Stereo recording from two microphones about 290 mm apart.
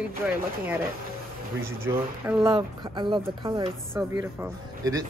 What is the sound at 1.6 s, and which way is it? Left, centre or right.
Speech, centre.